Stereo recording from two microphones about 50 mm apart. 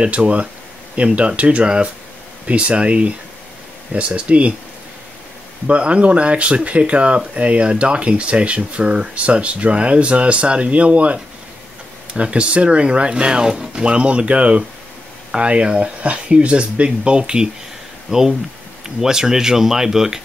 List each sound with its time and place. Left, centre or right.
0.0 s speech: right
5.7 s speech: right